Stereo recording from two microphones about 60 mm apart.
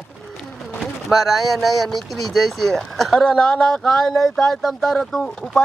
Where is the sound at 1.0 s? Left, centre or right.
Centre.